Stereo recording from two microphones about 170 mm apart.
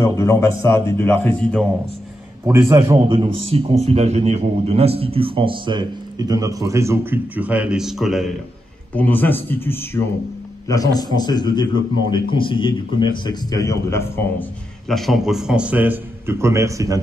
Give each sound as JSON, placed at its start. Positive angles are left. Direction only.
{"t": 0.0, "sound": "a man's voice", "side_deg": 20}
{"t": 2.4, "sound": "a man's voice", "side_deg": -15}
{"t": 3.1, "sound": "a man's voice", "side_deg": -35}
{"t": 8.9, "sound": "a man's voice", "side_deg": 10}
{"t": 14.9, "sound": "a man's voice", "side_deg": 0}